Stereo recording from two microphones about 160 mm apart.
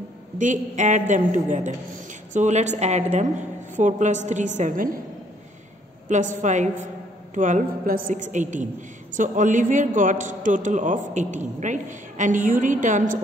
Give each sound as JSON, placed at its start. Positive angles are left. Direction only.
{"t": 0.4, "sound": "a woman's voice", "side_deg": -50}
{"t": 6.0, "sound": "a woman's voice", "side_deg": -55}